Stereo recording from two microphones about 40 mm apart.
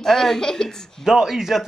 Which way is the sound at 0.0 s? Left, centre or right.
Centre.